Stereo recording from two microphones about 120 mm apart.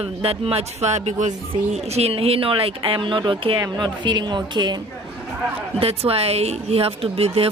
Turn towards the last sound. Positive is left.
turn(degrees=-55)  # may be behind; listen again after turning